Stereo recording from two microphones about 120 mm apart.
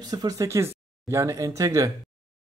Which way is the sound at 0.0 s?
30° right (ahead or behind).